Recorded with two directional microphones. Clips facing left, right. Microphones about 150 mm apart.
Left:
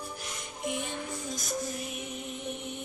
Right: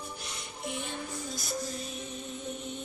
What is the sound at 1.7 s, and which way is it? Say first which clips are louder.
Music: left 1 dB; 15° left (ahead or behind).